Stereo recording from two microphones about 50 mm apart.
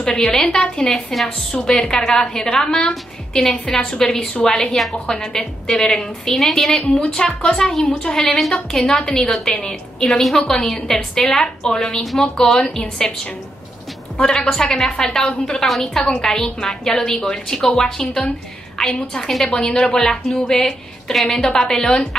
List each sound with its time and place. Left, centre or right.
0.0 s a woman's voice: centre
4.6 s a woman's voice: centre